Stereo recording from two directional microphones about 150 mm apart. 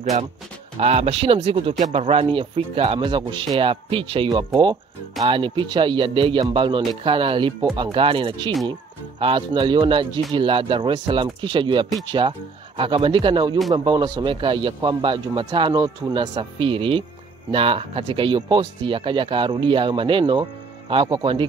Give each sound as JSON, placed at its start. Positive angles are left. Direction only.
{"t": 0.7, "sound": "a man's voice", "side_deg": -45}